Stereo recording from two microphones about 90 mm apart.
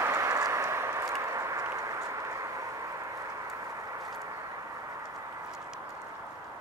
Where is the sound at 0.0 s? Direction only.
35° right (ahead or behind).